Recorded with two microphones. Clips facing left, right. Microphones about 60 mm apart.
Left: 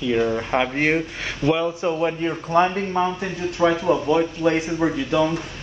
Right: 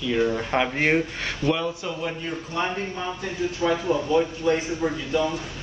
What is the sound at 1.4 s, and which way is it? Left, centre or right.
Speech, left.